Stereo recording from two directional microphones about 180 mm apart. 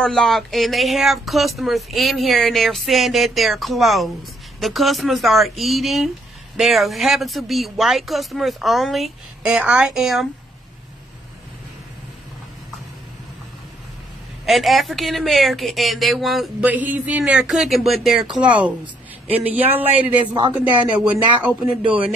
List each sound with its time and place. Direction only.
0.0 s speech: centre (ahead or behind)
14.4 s a man's voice: centre (ahead or behind)
20.3 s speech: 25° right (ahead or behind)